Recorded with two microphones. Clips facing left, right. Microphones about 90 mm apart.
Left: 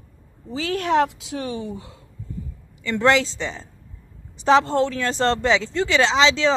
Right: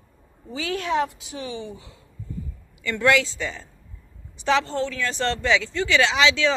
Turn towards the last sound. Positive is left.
turn(degrees=30)  # may be behind; listen again after turning